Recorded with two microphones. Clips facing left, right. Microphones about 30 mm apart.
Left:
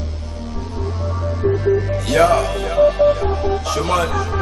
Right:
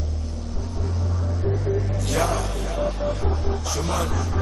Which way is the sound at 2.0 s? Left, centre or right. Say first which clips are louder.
Left 11 dB; left.